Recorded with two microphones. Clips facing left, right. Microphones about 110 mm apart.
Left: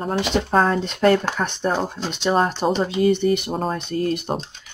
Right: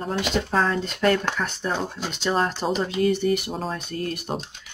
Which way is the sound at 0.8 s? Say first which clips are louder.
Left 4 dB; 25° left (ahead or behind).